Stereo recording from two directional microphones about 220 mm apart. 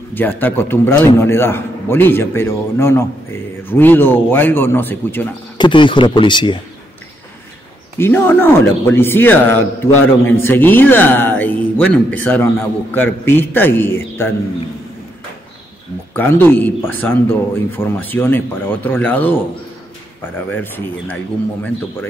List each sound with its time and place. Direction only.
0.1 s a man's voice: 10° left (ahead or behind)
5.6 s speech: 20° left (ahead or behind)
8.0 s a man's voice: 10° left (ahead or behind)
16.1 s a man's voice: 10° left (ahead or behind)
20.5 s a man's voice: 10° left (ahead or behind)